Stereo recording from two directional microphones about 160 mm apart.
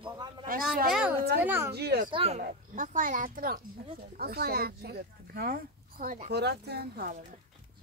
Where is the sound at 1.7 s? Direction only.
90° right.